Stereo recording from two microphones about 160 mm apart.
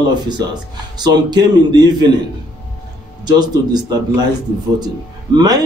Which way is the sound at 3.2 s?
25° right (ahead or behind).